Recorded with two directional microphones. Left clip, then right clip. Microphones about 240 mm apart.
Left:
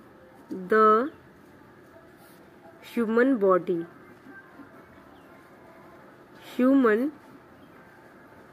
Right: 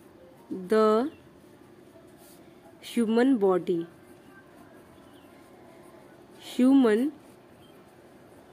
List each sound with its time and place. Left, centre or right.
0.7 s speech: centre
2.8 s speech: centre
6.4 s speech: centre